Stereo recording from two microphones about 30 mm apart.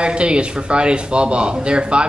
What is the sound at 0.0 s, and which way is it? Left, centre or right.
Speech, right.